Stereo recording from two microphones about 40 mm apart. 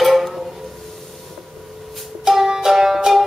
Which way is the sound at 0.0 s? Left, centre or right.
Centre.